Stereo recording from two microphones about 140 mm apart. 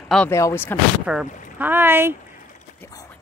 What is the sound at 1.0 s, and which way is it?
Speech, 10° right (ahead or behind).